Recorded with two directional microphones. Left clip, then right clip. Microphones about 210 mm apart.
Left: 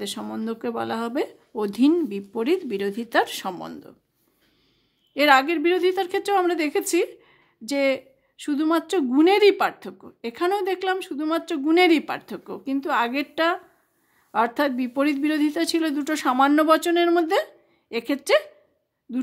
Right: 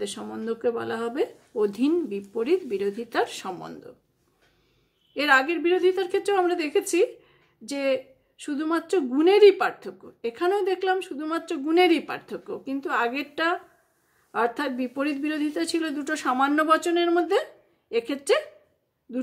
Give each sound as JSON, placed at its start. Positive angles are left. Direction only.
{"t": 0.0, "sound": "a woman's voice", "side_deg": 35}
{"t": 5.1, "sound": "a woman's voice", "side_deg": 35}